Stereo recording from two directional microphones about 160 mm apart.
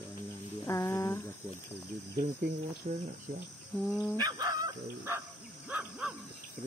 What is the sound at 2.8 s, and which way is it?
Speech, 50° right (ahead or behind).